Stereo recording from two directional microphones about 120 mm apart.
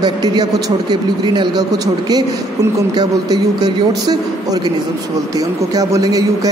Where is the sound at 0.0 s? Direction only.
35° right (ahead or behind).